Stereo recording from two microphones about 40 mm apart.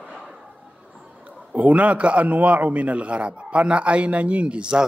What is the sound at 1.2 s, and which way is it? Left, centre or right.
A man's voice, right.